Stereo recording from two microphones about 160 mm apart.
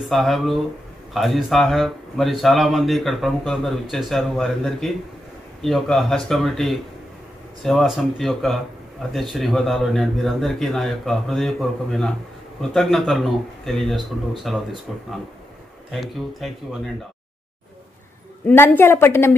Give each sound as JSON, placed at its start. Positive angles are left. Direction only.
{"t": 0.0, "sound": "speech", "side_deg": 0}
{"t": 18.5, "sound": "a woman's voice", "side_deg": 15}